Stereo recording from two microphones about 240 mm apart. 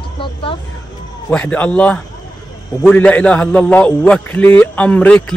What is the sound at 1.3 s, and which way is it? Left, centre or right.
A man's voice, centre.